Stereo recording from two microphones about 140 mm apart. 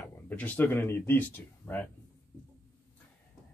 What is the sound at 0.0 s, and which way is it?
Speech, 10° left (ahead or behind).